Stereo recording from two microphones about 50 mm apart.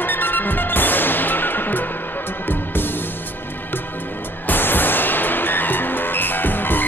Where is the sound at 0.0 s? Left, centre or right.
Left.